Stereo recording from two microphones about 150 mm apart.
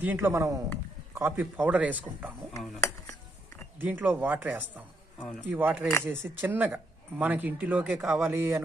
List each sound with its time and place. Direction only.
0.0 s speech: 15° right (ahead or behind)
2.8 s dishes: 20° left (ahead or behind)
3.7 s speech: 10° right (ahead or behind)